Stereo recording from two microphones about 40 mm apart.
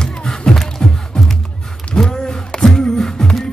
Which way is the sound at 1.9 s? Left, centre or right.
Centre.